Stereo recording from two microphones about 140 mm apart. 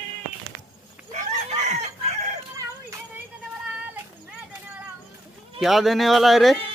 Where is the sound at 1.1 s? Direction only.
55° right (ahead or behind).